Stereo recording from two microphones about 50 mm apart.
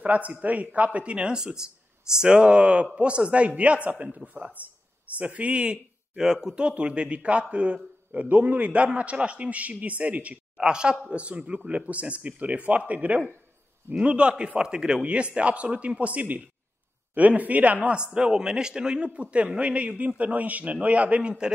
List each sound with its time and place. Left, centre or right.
0.0 s speech: right
10.6 s speech: centre